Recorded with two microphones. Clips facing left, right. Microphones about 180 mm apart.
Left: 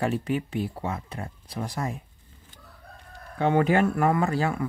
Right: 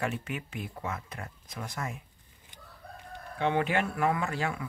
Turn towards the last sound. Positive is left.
turn(degrees=40)  # may be behind; listen again after turning